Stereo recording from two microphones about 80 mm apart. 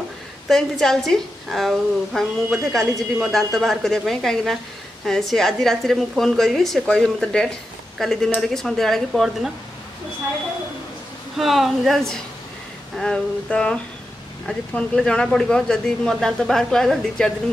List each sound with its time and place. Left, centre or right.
0.5 s a woman's voice: centre
11.3 s a woman's voice: centre